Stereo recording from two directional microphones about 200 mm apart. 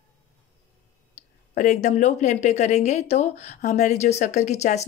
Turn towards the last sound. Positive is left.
turn(degrees=35)  # may be behind; listen again after turning